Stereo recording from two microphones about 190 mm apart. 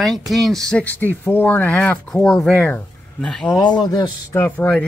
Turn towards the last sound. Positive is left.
turn(degrees=10)  # may be behind; listen again after turning